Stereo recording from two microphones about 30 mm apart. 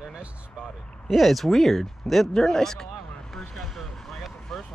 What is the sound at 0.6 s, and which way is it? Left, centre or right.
Speech, centre.